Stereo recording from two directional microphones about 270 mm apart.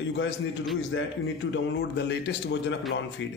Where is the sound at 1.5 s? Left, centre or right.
Left.